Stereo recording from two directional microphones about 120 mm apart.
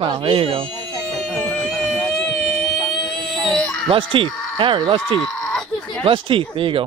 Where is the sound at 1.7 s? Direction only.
5° left (ahead or behind).